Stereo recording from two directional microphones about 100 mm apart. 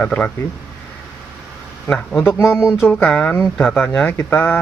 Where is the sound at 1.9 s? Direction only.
10° left (ahead or behind).